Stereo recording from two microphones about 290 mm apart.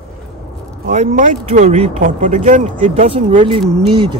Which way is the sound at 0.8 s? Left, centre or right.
Right.